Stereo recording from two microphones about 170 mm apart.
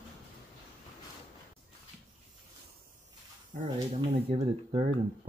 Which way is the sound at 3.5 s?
45° right (ahead or behind).